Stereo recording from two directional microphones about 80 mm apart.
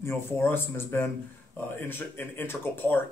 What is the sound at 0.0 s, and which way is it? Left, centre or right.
Speech, left.